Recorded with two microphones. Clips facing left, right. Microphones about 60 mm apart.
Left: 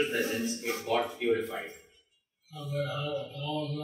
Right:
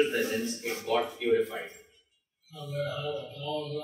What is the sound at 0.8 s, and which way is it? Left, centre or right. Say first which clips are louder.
Speech: right 1 dB; centre.